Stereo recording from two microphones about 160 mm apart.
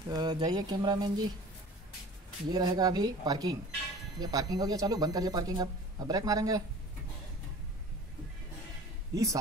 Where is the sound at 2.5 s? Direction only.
25° right (ahead or behind).